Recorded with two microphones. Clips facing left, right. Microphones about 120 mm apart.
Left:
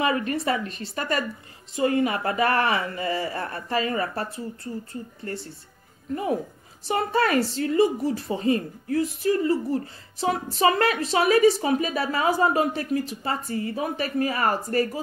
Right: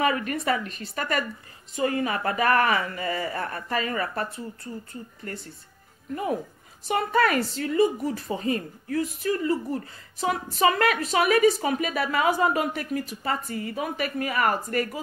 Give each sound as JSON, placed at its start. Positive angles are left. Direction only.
{"t": 0.0, "sound": "speech", "side_deg": 30}
{"t": 6.9, "sound": "speech", "side_deg": 35}